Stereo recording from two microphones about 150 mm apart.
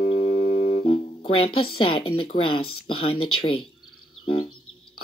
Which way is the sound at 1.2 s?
90° left.